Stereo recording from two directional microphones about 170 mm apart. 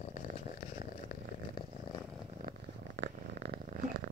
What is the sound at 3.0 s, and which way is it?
Purr, 80° right.